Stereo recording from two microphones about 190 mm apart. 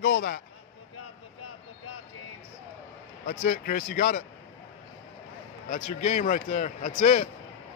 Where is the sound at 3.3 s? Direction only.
45° left (ahead or behind).